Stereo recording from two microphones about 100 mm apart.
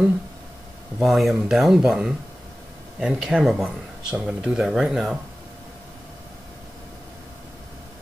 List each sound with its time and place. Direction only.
0.9 s speech: centre (ahead or behind)